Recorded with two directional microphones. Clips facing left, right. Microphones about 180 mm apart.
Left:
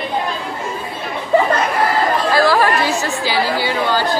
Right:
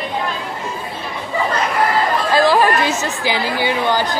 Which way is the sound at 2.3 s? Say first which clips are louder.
Right 2 dB; 15° right (ahead or behind).